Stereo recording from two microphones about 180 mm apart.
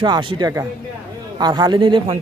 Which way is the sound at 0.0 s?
25° right (ahead or behind).